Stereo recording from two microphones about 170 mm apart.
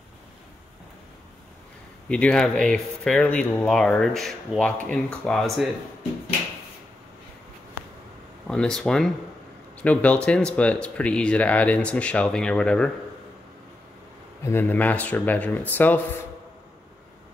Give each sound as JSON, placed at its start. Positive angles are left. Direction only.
{"t": 2.0, "sound": "speech", "side_deg": 5}
{"t": 8.5, "sound": "speech", "side_deg": 5}
{"t": 14.4, "sound": "speech", "side_deg": 15}